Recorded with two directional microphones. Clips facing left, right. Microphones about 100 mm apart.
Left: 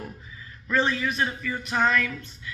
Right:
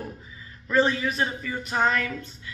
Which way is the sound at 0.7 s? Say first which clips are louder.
Right 2 dB; 35° right (ahead or behind).